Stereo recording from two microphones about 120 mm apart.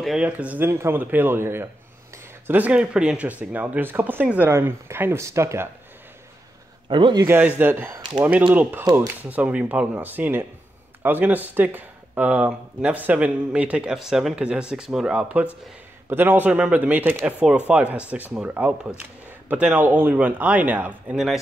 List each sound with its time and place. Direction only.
0.0 s speech: 5° right (ahead or behind); by 5.7 s 25° right (ahead or behind)
6.9 s a man's voice: 40° right (ahead or behind)
7.2 s speech: 15° right (ahead or behind)